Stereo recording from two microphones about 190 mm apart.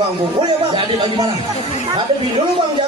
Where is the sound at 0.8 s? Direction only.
25° right (ahead or behind).